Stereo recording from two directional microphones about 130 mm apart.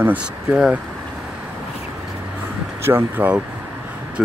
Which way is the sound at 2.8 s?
15° right (ahead or behind).